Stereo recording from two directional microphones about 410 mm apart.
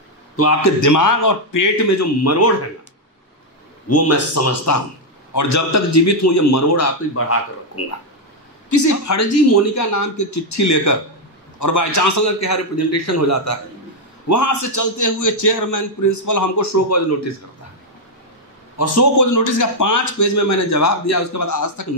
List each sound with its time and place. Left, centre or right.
0.4 s a man's voice: left
3.9 s a man's voice: left
8.6 s a man's voice: left
18.8 s a man's voice: left